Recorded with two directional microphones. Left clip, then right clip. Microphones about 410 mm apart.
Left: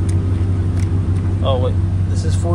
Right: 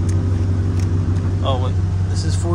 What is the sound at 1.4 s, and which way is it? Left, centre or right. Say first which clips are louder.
Speech: left 4 dB; centre.